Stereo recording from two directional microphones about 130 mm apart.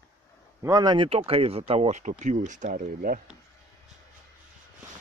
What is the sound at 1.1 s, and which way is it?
Speech, 50° right (ahead or behind).